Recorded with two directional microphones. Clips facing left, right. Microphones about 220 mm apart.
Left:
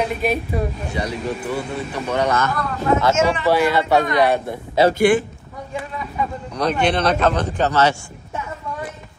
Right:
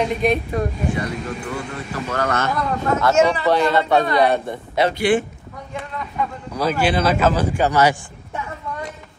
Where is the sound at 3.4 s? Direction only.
5° left (ahead or behind).